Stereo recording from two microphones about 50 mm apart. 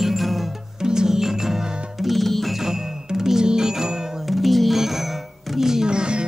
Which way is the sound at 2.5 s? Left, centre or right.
Centre.